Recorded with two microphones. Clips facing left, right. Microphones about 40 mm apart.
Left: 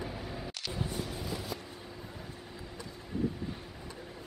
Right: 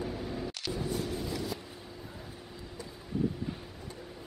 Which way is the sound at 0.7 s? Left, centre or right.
Centre.